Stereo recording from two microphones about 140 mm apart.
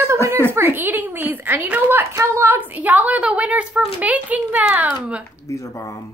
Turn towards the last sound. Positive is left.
turn(degrees=20)  # may be behind; listen again after turning